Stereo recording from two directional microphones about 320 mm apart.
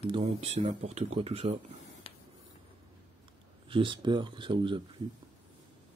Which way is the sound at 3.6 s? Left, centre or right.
Centre.